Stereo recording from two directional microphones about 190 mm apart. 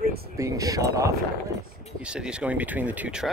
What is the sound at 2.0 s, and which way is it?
Speech, 5° right (ahead or behind).